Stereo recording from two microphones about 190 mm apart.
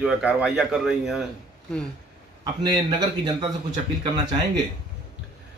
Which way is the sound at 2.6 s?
20° right (ahead or behind).